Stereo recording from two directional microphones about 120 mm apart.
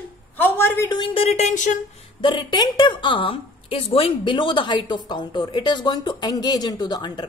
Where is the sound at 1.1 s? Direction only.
60° left (ahead or behind); by 1.8 s 90° left.